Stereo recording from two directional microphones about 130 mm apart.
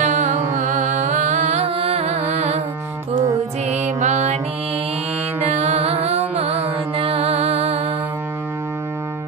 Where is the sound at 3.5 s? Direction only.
60° right (ahead or behind).